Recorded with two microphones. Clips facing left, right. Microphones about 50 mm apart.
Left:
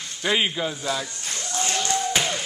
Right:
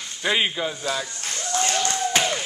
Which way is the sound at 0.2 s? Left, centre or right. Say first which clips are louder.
Even; centre.